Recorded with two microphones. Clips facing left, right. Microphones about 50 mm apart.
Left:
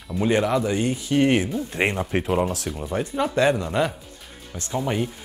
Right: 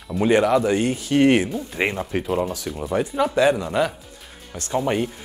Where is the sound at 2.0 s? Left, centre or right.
Centre.